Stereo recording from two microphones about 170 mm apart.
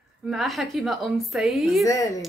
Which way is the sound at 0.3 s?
Centre (ahead or behind).